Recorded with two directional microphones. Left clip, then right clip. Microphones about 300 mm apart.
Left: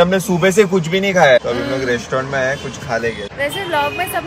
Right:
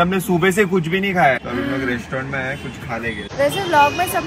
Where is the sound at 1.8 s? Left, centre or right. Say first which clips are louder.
Left 5 dB; centre.